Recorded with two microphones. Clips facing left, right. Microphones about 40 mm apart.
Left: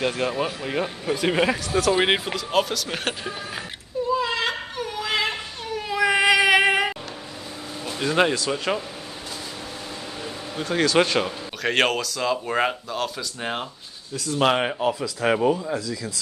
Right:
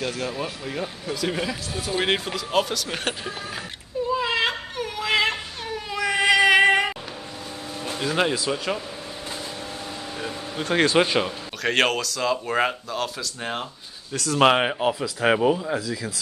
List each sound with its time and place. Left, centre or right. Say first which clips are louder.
0.0 s speech: left 4 dB; left
2.0 s speech: left 2 dB; centre
2.3 s speech: left 1 dB; centre
4.1 s a sound: even; centre
5.0 s music: right 3 dB; centre
5.9 s cat: left 4 dB; centre
6.2 s female singing: right 3 dB; centre
8.0 s speech: left 3 dB; centre
10.2 s a sound: right 1 dB; right
11.0 s speech: even; centre
14.1 s speech: right 2 dB; right
14.5 s speech: right 1 dB; centre